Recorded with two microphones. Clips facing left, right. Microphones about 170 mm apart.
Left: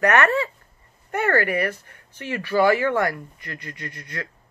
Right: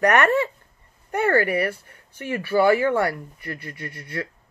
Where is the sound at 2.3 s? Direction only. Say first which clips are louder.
Right 1 dB; 10° right (ahead or behind).